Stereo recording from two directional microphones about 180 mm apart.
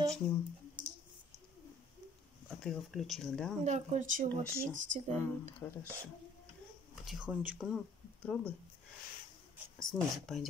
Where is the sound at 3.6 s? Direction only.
40° right (ahead or behind).